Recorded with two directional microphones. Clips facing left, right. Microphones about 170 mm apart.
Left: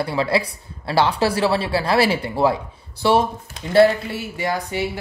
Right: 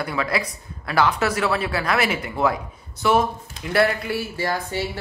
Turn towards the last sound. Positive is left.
turn(degrees=15)  # may be behind; listen again after turning